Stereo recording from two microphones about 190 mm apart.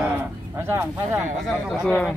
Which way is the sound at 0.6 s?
15° right (ahead or behind).